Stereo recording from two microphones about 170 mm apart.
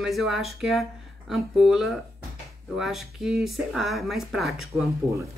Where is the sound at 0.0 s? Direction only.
Centre (ahead or behind).